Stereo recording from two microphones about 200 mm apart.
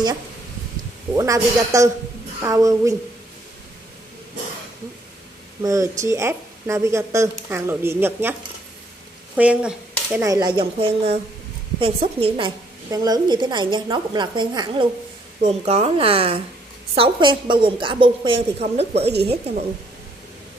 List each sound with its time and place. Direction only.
1.1 s speech: 15° right (ahead or behind)
5.6 s speech: 15° right (ahead or behind)
9.4 s speech: 5° right (ahead or behind)
10.2 s a woman's voice: 20° right (ahead or behind)
19.0 s a woman's voice: 55° right (ahead or behind)